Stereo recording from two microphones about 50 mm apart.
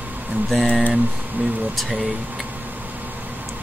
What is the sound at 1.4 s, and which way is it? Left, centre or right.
Speech, right.